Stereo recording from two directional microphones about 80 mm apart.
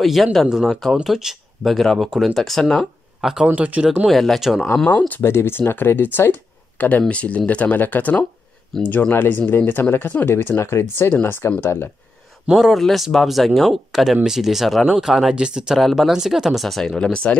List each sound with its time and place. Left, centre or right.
0.0 s speech: centre
2.3 s speech: centre
3.4 s speech: centre
4.1 s speech: centre
4.8 s speech: centre
5.2 s speech: left
8.7 s speech: centre
9.1 s speech: left
12.5 s speech: centre